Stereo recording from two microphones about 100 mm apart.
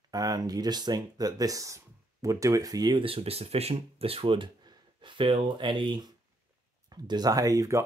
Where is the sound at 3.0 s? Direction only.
70° right (ahead or behind); by 6.0 s 50° right (ahead or behind).